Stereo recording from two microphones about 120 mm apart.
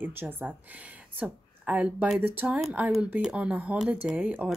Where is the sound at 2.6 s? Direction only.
5° right (ahead or behind).